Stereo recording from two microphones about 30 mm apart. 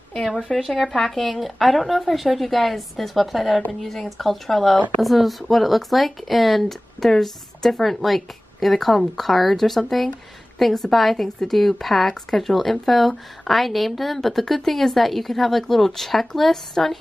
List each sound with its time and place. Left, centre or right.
0.5 s speech: centre
1.1 s speech: centre
6.6 s speech: centre